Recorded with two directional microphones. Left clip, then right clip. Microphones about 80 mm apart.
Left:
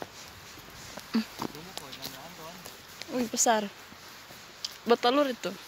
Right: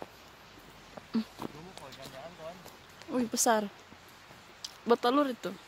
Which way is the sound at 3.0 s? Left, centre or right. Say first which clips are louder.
Left 1 dB; left.